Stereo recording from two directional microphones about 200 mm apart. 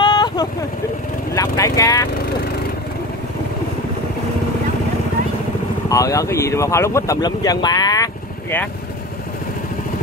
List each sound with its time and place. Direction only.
0.0 s vehicle: 20° left (ahead or behind)
5.9 s speech: 15° left (ahead or behind)